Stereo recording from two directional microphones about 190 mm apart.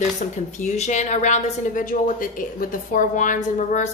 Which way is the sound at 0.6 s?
40° left (ahead or behind).